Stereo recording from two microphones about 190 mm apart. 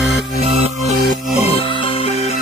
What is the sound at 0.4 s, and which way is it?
Music, 35° right (ahead or behind).